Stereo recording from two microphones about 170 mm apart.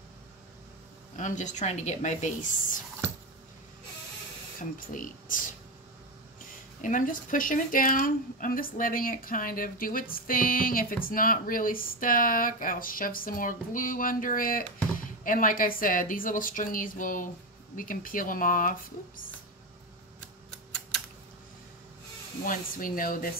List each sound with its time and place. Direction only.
1.1 s a woman's voice: 45° left (ahead or behind)
4.6 s a woman's voice: 50° left (ahead or behind)
6.8 s a woman's voice: 50° left (ahead or behind)
22.4 s speech: 55° left (ahead or behind)